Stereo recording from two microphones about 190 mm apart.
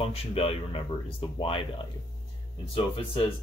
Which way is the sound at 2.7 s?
30° left (ahead or behind).